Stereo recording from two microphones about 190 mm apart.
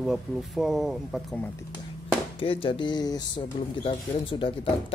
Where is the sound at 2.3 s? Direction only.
30° left (ahead or behind).